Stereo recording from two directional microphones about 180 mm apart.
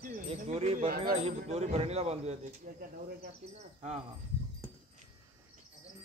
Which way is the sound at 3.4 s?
35° right (ahead or behind).